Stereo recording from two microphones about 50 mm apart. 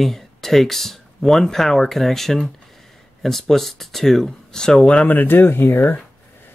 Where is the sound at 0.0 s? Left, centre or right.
Centre; by 5.0 s left.